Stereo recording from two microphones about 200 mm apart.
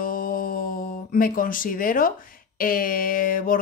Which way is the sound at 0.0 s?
45° left (ahead or behind).